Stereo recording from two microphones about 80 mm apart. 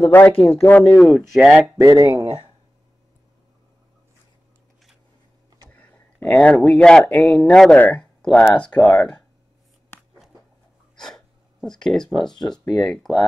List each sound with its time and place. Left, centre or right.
0.0 s speech: left
0.8 s speech: centre
1.3 s speech: centre
1.8 s speech: right
5.7 s a sound: left
6.2 s speech: centre
11.0 s gasp: centre
12.7 s speech: centre